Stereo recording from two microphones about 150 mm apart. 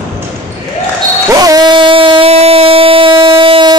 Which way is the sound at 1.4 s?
25° right (ahead or behind).